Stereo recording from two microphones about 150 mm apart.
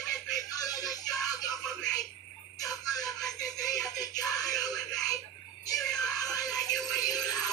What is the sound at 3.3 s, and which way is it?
Music, 25° left (ahead or behind).